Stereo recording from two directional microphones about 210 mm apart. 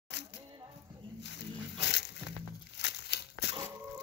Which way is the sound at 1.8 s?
55° left (ahead or behind).